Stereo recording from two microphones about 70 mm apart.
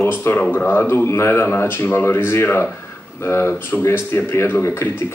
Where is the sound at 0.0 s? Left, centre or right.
Left.